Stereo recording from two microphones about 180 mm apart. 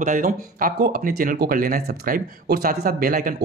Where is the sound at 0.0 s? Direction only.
45° right (ahead or behind).